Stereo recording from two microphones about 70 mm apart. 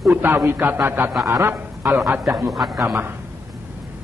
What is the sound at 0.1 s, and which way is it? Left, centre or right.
A man's voice, right.